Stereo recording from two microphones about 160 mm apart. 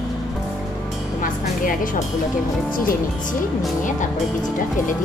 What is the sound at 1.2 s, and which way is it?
Speech, 55° left (ahead or behind).